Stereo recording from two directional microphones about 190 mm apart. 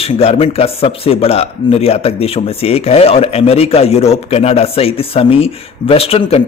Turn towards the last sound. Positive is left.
turn(degrees=30)  # may be behind; listen again after turning